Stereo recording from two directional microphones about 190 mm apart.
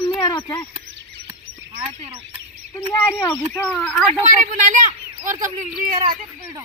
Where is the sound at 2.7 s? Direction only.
15° left (ahead or behind).